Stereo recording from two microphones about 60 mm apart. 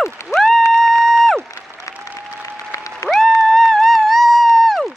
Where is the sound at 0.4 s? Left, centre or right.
Centre.